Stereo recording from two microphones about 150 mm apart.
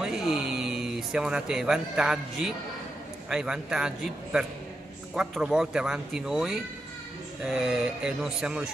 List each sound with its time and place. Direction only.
0.0 s speech: 5° right (ahead or behind)